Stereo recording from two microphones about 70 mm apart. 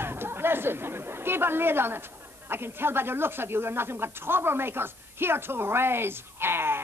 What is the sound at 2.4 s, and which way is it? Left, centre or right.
Speech, right.